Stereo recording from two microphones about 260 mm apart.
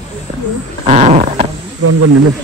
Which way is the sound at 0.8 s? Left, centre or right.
Right.